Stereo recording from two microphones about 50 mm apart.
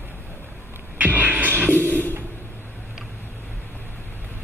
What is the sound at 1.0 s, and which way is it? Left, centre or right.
Music, right.